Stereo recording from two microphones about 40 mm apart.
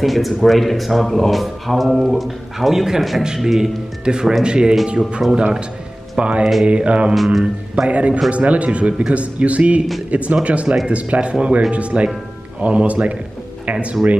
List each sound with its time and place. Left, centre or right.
0.0 s speech: centre
4.0 s speech: right